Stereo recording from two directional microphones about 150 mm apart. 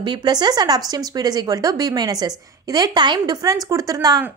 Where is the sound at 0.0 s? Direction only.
30° right (ahead or behind).